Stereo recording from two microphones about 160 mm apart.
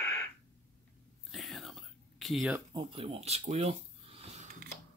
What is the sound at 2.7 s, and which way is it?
Speech, 35° right (ahead or behind).